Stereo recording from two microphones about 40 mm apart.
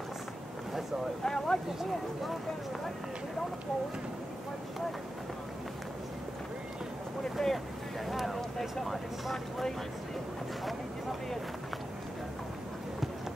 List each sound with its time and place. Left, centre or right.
1.2 s a sound: centre
7.3 s vehicle: centre
8.8 s speech: centre